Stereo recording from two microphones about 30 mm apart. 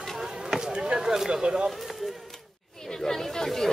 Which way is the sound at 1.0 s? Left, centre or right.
Centre.